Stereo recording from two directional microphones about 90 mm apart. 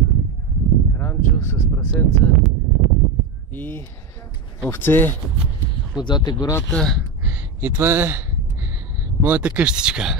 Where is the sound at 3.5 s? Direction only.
20° left (ahead or behind).